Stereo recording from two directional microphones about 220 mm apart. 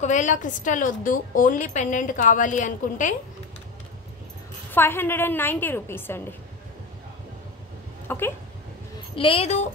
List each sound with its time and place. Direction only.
0.0 s a woman's voice: 35° left (ahead or behind)
4.7 s a woman's voice: 10° left (ahead or behind)
8.1 s speech: 10° left (ahead or behind)
9.1 s a woman's voice: 25° left (ahead or behind)